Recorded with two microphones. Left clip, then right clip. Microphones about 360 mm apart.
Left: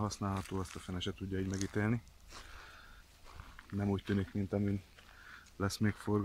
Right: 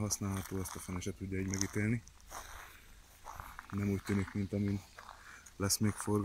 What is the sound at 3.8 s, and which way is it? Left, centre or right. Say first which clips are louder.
Speech: left 1 dB; left.